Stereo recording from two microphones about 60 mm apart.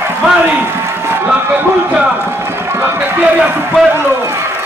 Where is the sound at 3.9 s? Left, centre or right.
Right.